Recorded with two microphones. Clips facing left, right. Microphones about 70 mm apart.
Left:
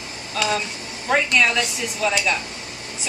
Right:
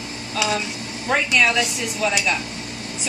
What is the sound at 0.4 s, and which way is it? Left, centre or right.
Speech, centre.